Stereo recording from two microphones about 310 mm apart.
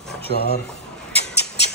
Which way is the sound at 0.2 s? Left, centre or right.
Left.